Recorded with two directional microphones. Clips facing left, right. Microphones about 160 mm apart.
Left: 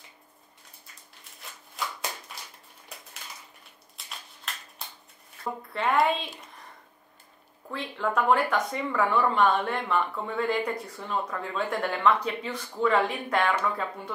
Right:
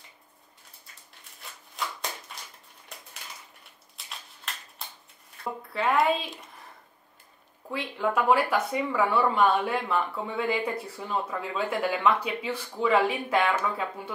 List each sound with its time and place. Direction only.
4.0 s a sound: centre (ahead or behind)
5.7 s speech: centre (ahead or behind)
7.7 s speech: 5° right (ahead or behind)